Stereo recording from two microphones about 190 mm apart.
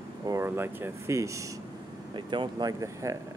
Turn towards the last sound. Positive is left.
turn(degrees=-15)  # may be behind; listen again after turning